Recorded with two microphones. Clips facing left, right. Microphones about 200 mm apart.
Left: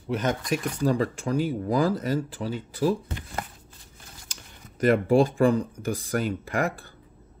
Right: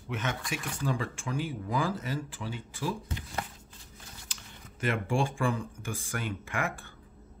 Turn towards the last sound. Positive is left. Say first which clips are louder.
# left 7 dB
turn(degrees=40)  # may be behind; listen again after turning